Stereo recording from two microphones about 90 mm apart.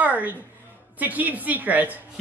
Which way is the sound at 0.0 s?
20° right (ahead or behind).